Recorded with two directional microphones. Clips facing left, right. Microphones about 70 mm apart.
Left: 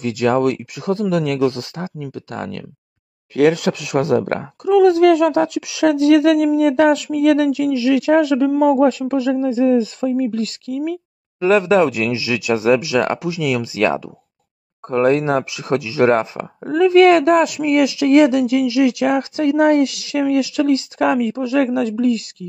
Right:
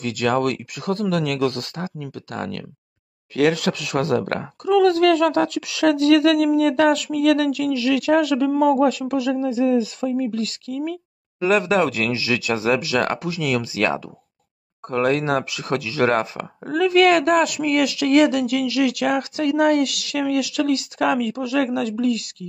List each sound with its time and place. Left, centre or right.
0.0 s speech: left
8.5 s a man's voice: centre
8.7 s speech: left
11.4 s speech: left